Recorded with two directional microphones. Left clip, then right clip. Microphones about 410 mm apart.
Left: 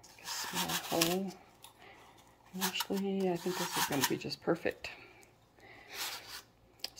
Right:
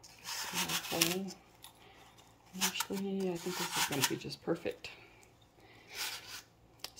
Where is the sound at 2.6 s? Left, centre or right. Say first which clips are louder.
Left 1 dB; centre.